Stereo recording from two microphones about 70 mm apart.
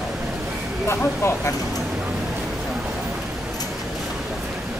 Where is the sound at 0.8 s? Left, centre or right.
Left.